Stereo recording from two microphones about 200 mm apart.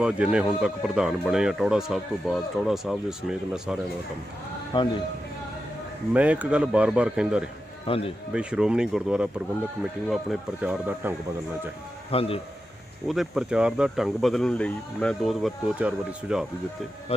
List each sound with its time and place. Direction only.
0.0 s speech: 5° right (ahead or behind)
4.7 s a man's voice: 25° left (ahead or behind)
6.1 s speech: 5° right (ahead or behind)
7.8 s a man's voice: 30° left (ahead or behind)
8.3 s speech: 5° right (ahead or behind)
12.1 s a man's voice: 30° left (ahead or behind)
13.1 s speech: centre (ahead or behind)